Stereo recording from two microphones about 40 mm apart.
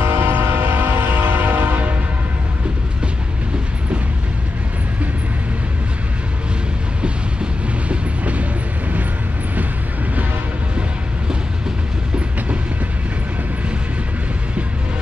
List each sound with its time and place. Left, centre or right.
0.0 s train: right
0.3 s train: right
1.1 s train: right
7.9 s train: right